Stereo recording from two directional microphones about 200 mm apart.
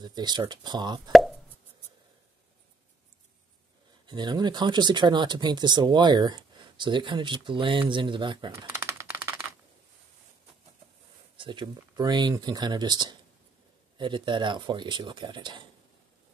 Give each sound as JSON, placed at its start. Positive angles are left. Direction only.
{"t": 0.0, "sound": "speech", "side_deg": -20}
{"t": 4.0, "sound": "speech", "side_deg": -20}
{"t": 8.6, "sound": "typing", "side_deg": -10}
{"t": 11.3, "sound": "speech", "side_deg": -25}